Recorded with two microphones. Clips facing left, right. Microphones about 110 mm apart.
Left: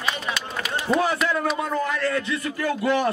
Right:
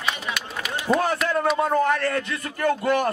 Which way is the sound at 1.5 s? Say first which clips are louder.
Right 5 dB; 50° right (ahead or behind).